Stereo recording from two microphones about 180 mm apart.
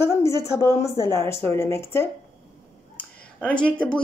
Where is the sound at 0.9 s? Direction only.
20° right (ahead or behind).